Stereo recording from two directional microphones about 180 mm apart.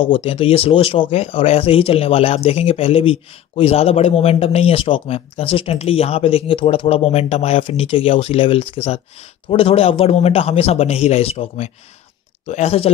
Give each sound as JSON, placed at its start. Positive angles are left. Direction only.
{"t": 0.0, "sound": "speech", "side_deg": 30}